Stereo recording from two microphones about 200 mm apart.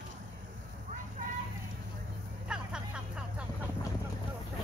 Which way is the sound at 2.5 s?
5° right (ahead or behind).